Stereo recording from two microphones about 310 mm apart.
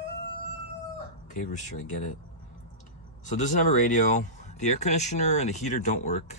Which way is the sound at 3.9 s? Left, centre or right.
Left.